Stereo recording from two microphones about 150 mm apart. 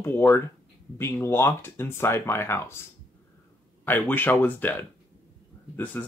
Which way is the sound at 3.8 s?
15° left (ahead or behind).